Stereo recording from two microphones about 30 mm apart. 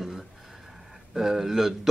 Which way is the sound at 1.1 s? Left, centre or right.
Centre.